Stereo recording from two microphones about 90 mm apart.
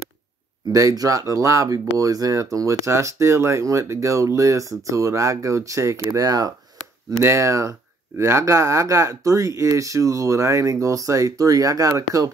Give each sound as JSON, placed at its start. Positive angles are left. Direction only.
{"t": 0.7, "sound": "speech", "side_deg": -40}